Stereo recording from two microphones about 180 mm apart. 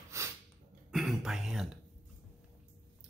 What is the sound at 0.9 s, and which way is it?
Throat clearing, centre (ahead or behind).